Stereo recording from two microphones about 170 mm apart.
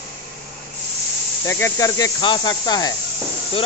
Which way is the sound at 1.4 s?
15° left (ahead or behind).